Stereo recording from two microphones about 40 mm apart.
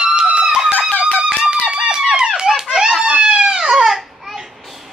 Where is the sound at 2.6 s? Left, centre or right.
Centre.